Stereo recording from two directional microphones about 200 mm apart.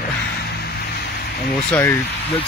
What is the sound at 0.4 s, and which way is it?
Music, 50° left (ahead or behind).